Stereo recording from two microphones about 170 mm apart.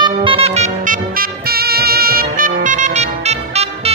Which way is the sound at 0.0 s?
30° right (ahead or behind).